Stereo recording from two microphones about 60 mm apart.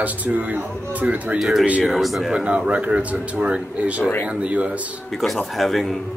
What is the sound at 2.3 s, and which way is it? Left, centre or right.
Speech, right.